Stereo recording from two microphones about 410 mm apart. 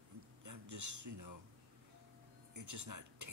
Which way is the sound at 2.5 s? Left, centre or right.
Right.